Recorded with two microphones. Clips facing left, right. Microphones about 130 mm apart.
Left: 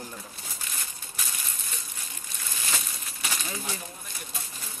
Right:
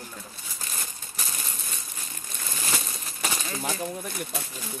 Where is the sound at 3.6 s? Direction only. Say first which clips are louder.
Right 8 dB; 70° right (ahead or behind).